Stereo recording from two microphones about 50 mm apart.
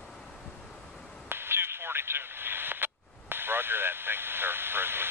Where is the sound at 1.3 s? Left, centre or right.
Right.